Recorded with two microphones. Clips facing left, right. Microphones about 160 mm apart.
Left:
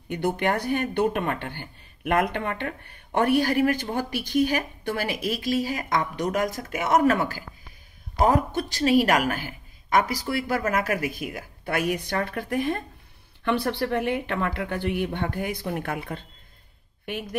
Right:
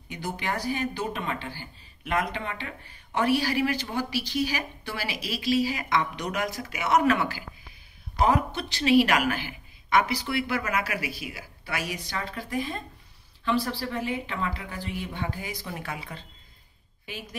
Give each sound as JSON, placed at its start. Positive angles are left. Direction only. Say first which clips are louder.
{"t": 0.1, "sound": "a woman's voice", "louder": "left 7 dB", "side_deg": 60}